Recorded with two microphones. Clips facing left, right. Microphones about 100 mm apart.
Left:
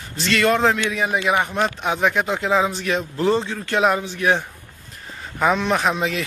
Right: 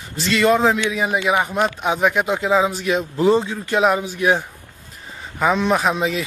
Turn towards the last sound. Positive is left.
turn(degrees=0)  # may be behind; listen again after turning